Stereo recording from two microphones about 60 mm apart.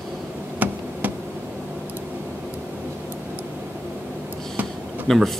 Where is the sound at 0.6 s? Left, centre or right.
Right.